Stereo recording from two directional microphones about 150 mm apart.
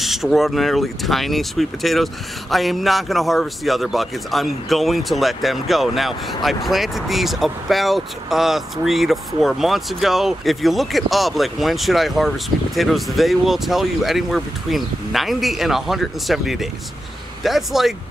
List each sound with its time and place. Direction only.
0.0 s a man's voice: centre (ahead or behind)